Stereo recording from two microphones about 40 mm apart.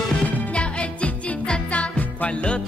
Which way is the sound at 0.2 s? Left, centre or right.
Left.